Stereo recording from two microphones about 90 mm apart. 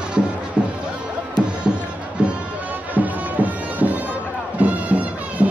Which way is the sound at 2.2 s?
15° right (ahead or behind).